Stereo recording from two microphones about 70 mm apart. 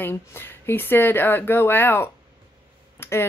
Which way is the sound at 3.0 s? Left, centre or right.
Left.